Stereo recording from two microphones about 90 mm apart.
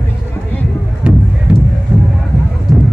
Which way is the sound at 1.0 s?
10° right (ahead or behind).